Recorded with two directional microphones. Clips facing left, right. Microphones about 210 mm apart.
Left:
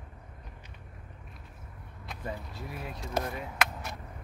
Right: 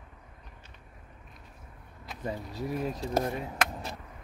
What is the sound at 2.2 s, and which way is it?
Speech, 40° right (ahead or behind).